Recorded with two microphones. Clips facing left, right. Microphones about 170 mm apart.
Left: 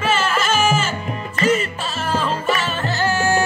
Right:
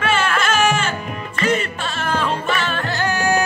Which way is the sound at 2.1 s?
5° left (ahead or behind).